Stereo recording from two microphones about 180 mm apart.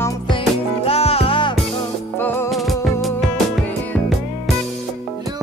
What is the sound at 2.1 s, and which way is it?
Music, 15° left (ahead or behind).